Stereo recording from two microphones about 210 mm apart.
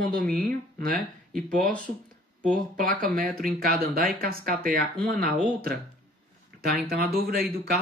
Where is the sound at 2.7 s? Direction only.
40° right (ahead or behind).